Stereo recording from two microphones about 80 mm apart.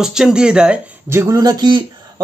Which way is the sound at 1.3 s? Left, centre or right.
Right.